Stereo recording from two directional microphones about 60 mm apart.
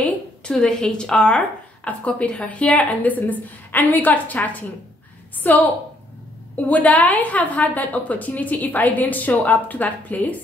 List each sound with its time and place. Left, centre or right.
0.0 s a woman's voice: centre